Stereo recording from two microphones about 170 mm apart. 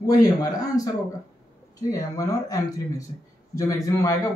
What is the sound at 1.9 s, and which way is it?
Speech, 20° left (ahead or behind).